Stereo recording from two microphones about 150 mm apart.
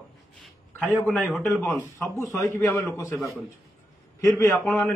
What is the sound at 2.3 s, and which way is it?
Speech, 15° left (ahead or behind).